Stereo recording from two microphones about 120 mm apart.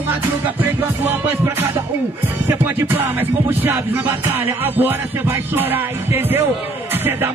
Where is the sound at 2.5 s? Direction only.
20° right (ahead or behind).